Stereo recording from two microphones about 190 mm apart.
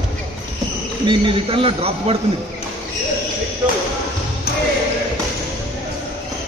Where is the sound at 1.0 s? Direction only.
30° right (ahead or behind).